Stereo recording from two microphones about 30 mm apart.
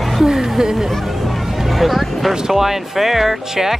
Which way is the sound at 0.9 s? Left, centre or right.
Centre.